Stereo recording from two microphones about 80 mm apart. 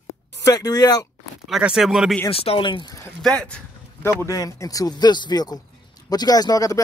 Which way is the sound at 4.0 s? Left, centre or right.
Left.